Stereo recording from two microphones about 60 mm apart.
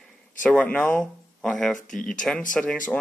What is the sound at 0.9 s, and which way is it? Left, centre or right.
Speech, centre.